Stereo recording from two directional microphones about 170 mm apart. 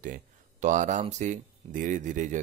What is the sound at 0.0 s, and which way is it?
Speech, 50° right (ahead or behind).